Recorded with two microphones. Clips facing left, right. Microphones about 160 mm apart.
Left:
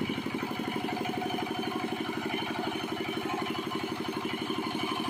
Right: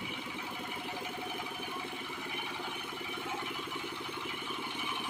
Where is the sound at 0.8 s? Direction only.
55° left (ahead or behind).